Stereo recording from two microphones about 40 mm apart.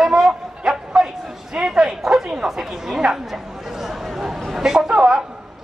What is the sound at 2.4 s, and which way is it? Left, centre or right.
Chatter, centre.